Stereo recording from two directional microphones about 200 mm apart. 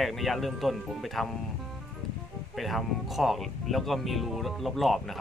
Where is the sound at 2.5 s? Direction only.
Centre (ahead or behind).